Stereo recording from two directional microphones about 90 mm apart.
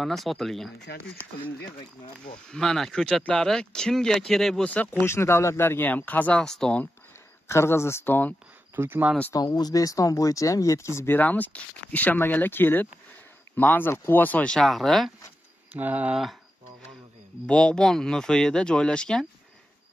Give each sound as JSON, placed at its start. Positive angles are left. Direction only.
{"t": 0.0, "sound": "speech", "side_deg": 0}
{"t": 2.5, "sound": "speech", "side_deg": 5}
{"t": 4.6, "sound": "speech", "side_deg": 15}
{"t": 5.0, "sound": "speech", "side_deg": 30}
{"t": 7.4, "sound": "speech", "side_deg": 30}
{"t": 8.7, "sound": "speech", "side_deg": -25}
{"t": 9.3, "sound": "speech", "side_deg": 45}
{"t": 11.0, "sound": "speech", "side_deg": 20}
{"t": 14.6, "sound": "speech", "side_deg": 0}
{"t": 15.7, "sound": "speech", "side_deg": -20}
{"t": 17.5, "sound": "speech", "side_deg": 10}